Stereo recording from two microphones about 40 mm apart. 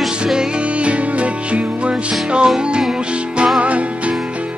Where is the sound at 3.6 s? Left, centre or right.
Right.